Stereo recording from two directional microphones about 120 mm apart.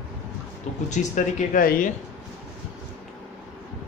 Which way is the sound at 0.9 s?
90° left.